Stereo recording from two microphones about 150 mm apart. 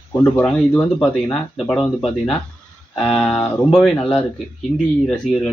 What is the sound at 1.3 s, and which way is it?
Speech, centre (ahead or behind).